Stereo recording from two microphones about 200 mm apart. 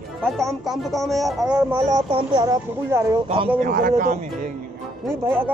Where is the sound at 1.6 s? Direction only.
15° right (ahead or behind).